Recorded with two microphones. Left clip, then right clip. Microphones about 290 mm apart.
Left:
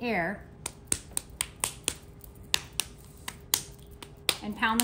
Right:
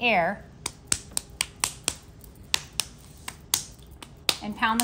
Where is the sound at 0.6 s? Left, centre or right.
Centre.